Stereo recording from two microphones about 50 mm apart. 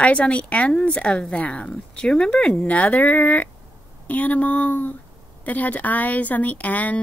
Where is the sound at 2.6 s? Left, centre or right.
Left.